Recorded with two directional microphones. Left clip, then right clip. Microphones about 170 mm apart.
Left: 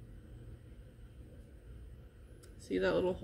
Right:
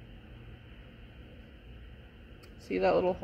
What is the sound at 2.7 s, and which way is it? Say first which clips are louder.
Speech: right 5 dB; 55° right (ahead or behind).